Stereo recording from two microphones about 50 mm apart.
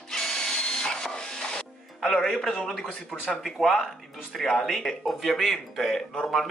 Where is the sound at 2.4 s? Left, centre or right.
Centre.